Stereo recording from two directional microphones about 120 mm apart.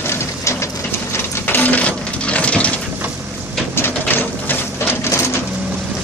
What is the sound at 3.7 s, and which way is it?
Printer, 15° left (ahead or behind).